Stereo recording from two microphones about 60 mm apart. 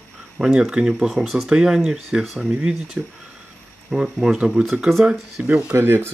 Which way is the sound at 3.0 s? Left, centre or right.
Right.